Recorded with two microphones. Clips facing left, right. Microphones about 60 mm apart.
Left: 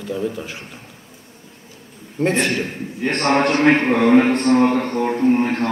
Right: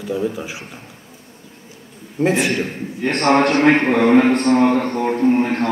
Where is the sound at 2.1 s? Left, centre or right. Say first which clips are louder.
Right 1 dB; centre.